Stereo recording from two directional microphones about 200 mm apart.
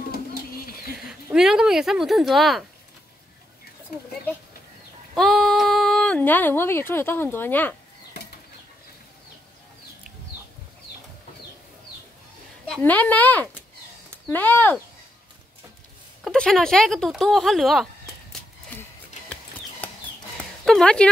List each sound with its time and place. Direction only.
0.1 s bird: 50° left (ahead or behind)
1.3 s speech: 5° right (ahead or behind)
5.1 s speech: centre (ahead or behind)
12.6 s speech: 5° left (ahead or behind)
16.3 s speech: 5° left (ahead or behind)
20.6 s speech: 5° left (ahead or behind)